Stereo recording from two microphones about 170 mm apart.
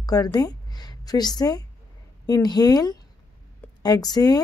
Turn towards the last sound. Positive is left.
turn(degrees=25)  # may be behind; listen again after turning